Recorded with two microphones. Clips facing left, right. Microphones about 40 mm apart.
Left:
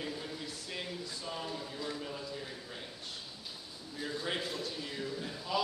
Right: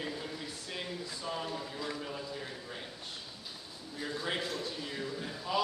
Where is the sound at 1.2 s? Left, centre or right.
Right.